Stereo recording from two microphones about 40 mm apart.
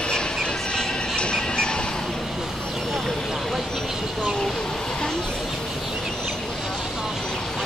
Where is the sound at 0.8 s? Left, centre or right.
Left.